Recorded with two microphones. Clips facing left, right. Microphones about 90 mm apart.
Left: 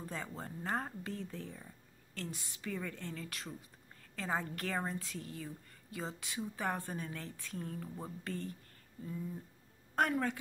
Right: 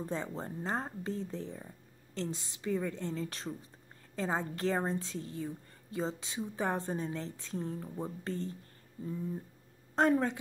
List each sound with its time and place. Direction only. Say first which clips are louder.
0.0 s a woman's voice: right 6 dB; 25° right (ahead or behind)
9.9 s a woman's voice: right 5 dB; 25° right (ahead or behind)